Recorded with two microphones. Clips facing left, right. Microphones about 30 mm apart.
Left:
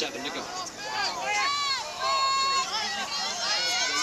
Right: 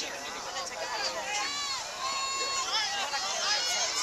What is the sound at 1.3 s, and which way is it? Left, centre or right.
Run, left.